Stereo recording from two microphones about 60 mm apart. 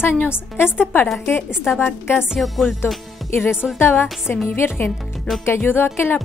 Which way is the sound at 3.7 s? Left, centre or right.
Left.